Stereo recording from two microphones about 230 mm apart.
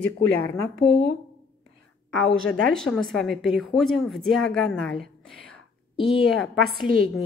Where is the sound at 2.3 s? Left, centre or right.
Centre.